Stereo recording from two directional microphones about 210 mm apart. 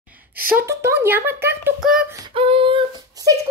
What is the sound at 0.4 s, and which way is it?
Speech, 45° right (ahead or behind).